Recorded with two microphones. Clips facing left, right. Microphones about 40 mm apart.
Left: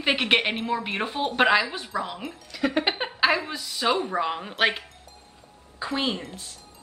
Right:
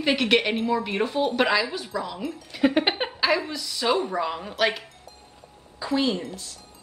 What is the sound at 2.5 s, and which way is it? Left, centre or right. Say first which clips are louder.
Speech: right 3 dB; centre.